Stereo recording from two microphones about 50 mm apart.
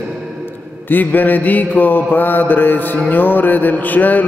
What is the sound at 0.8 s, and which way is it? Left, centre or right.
A man's voice, left.